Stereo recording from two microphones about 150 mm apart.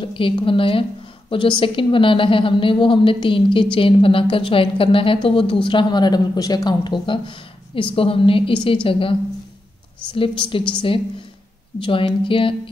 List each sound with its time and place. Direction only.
0.0 s a woman's voice: 35° left (ahead or behind)
10.1 s a woman's voice: 35° left (ahead or behind)